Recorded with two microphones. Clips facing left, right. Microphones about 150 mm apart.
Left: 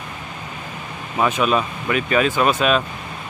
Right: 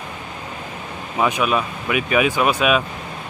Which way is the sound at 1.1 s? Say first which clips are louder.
Left 1 dB; 10° right (ahead or behind).